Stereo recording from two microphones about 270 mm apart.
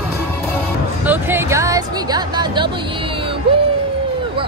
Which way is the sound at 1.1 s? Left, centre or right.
Centre.